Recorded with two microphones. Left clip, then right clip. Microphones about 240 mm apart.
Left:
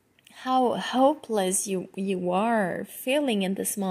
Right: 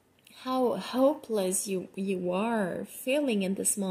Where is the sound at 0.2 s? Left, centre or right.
Left.